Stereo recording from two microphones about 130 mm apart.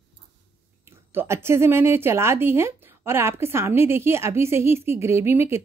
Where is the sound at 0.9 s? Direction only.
20° right (ahead or behind).